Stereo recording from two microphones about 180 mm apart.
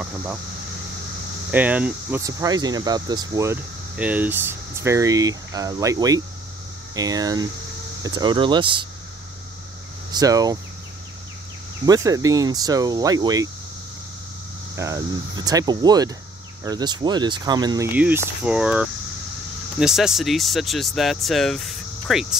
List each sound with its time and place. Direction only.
0.0 s speech: 10° right (ahead or behind)
1.5 s speech: 10° right (ahead or behind)
3.9 s speech: 10° right (ahead or behind); by 8.8 s 25° right (ahead or behind)
10.1 s speech: 20° right (ahead or behind)
11.8 s speech: 20° right (ahead or behind)
14.8 s speech: 15° right (ahead or behind)
17.9 s speech: 10° right (ahead or behind)